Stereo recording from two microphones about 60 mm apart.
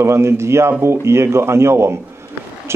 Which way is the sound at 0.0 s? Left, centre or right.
Right.